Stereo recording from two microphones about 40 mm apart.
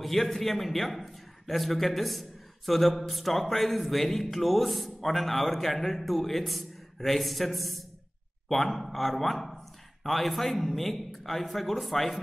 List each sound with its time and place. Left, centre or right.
0.0 s a man's voice: centre